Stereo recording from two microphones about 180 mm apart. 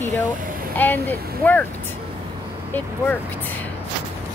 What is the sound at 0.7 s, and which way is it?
Speech, 10° left (ahead or behind).